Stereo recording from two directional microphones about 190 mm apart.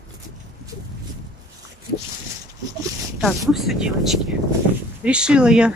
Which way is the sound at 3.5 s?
Centre (ahead or behind).